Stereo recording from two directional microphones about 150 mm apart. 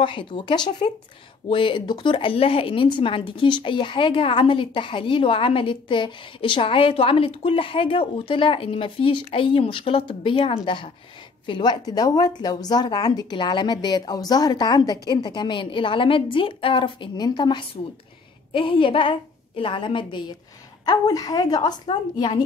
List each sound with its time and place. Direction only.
0.0 s speech: 35° left (ahead or behind)